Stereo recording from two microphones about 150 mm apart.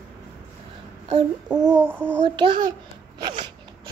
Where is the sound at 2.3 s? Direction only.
30° right (ahead or behind).